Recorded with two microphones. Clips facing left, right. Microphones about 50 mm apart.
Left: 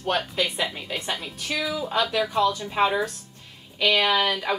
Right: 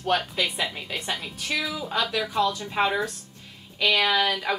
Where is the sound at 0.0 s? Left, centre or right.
Centre.